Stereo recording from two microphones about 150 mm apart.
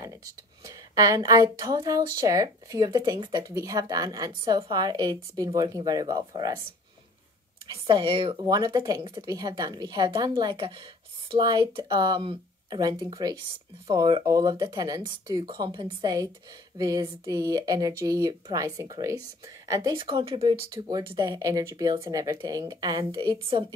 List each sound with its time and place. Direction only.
0.7 s a woman's voice: 25° right (ahead or behind)
7.6 s a woman's voice: 35° right (ahead or behind)
20.0 s a woman's voice: 35° right (ahead or behind)